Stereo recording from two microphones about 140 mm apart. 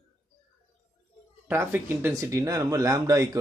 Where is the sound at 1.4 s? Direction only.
15° right (ahead or behind).